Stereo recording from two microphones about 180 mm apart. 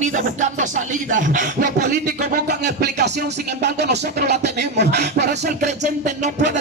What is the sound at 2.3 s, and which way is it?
Music, 65° right (ahead or behind).